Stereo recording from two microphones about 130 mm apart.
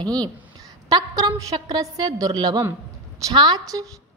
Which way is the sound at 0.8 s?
30° right (ahead or behind).